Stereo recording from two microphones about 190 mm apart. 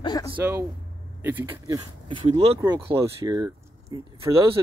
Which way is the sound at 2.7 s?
20° right (ahead or behind).